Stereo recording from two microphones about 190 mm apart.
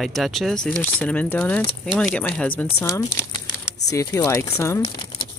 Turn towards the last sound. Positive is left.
turn(degrees=30)  # may be behind; listen again after turning